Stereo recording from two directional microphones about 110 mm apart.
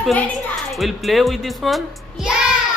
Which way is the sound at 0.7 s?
Centre (ahead or behind).